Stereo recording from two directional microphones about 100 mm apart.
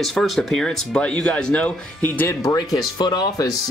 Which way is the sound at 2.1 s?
30° left (ahead or behind).